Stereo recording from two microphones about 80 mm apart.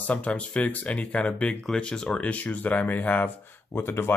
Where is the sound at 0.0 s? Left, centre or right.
Centre.